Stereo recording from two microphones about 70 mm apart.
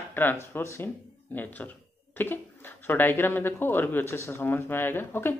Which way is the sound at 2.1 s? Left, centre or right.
Left.